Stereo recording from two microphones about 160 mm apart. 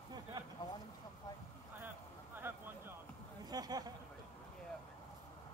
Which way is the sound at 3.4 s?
25° right (ahead or behind).